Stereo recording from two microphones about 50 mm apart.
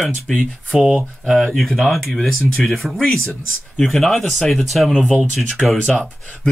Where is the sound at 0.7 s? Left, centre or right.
Centre.